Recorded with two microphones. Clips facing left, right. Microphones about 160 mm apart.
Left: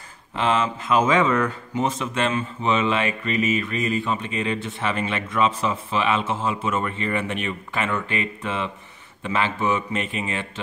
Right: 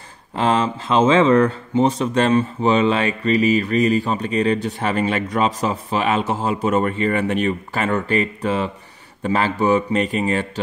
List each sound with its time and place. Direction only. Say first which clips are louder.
0.4 s speech: right 3 dB; 35° right (ahead or behind)